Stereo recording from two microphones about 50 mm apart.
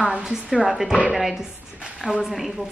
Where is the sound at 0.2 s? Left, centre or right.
Centre.